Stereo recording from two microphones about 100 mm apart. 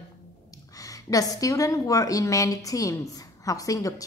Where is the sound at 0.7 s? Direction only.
35° left (ahead or behind).